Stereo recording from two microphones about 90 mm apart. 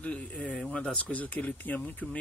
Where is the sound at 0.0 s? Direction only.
15° left (ahead or behind).